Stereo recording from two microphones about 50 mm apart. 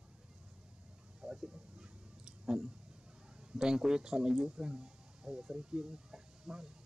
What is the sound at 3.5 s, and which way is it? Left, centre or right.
Speech, centre.